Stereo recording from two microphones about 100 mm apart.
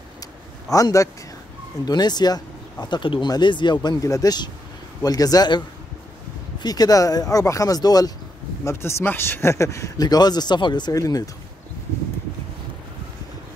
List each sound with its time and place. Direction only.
0.7 s speech: 35° left (ahead or behind)
1.9 s speech: 45° left (ahead or behind)
6.6 s speech: 40° left (ahead or behind)
8.6 s speech: 25° left (ahead or behind)